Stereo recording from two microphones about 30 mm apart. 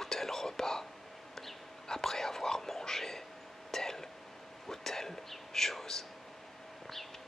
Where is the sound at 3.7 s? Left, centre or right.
Centre.